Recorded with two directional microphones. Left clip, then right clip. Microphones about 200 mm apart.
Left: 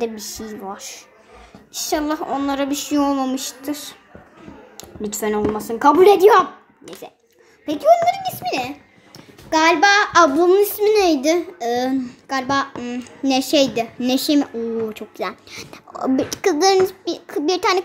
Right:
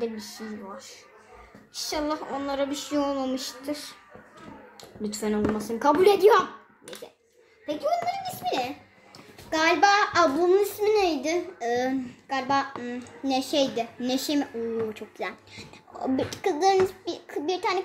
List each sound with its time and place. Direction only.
0.0 s speech: 40° left (ahead or behind)
1.7 s a child's voice: 25° left (ahead or behind)
7.6 s speech: 40° left (ahead or behind)
8.4 s a child's voice: 20° left (ahead or behind); by 11.3 s 35° left (ahead or behind)
11.5 s a child's voice: 25° left (ahead or behind)